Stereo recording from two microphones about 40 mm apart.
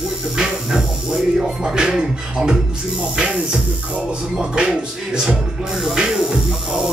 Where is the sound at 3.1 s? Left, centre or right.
Right.